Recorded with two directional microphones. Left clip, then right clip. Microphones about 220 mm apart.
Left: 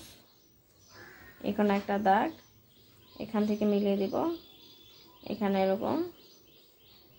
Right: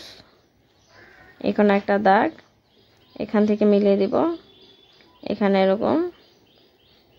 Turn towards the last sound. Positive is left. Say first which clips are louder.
# right 10 dB
turn(degrees=-35)  # may be behind; listen again after turning